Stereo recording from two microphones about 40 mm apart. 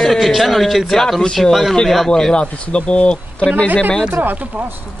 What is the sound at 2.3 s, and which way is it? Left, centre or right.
Speech, left.